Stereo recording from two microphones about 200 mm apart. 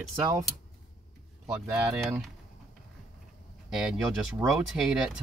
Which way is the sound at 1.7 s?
5° right (ahead or behind).